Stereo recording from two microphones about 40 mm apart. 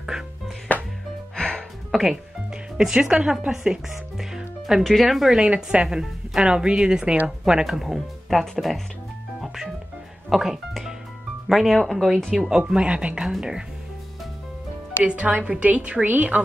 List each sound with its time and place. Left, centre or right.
0.7 s music: left
1.9 s speech: centre
2.8 s speech: centre
4.2 s music: centre
4.8 s speech: centre
5.4 s speech: right; by 8.8 s centre
10.3 s music: centre
11.4 s speech: centre
12.6 s speech: right
13.2 s speech: centre
15.0 s a woman's voice: right